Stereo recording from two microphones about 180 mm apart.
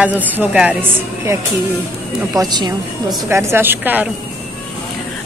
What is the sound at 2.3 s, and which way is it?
A woman's voice, 25° right (ahead or behind).